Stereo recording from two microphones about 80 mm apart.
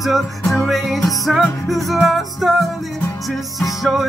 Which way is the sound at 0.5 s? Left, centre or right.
Centre.